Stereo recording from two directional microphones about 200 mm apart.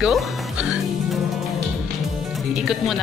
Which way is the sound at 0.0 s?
Centre (ahead or behind).